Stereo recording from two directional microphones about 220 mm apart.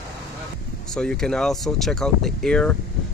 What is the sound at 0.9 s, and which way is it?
Speech, 5° left (ahead or behind).